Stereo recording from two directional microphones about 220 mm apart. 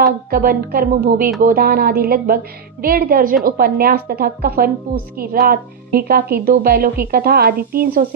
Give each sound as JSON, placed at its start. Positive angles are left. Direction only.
{"t": 0.3, "sound": "a woman's voice", "side_deg": -45}